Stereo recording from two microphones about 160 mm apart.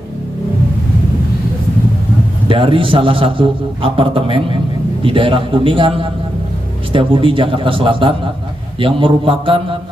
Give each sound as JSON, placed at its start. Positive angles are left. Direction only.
{"t": 2.4, "sound": "a man's voice", "side_deg": -35}